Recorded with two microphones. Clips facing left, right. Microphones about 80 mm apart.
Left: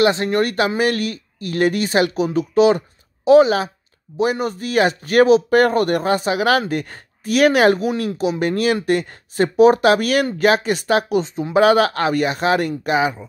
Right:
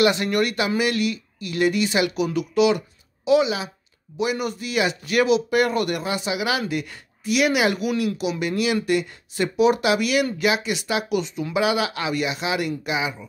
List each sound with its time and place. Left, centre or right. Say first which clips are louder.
0.0 s speech: left 3 dB; left